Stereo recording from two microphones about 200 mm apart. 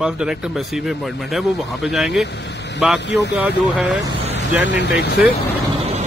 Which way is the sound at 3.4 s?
5° right (ahead or behind).